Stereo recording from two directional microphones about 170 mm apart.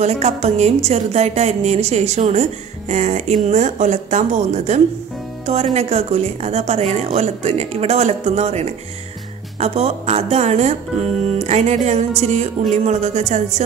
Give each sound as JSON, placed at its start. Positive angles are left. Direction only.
{"t": 0.0, "sound": "a woman's voice", "side_deg": -40}